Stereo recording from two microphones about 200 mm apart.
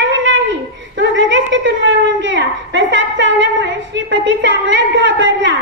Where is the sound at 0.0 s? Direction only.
65° right (ahead or behind).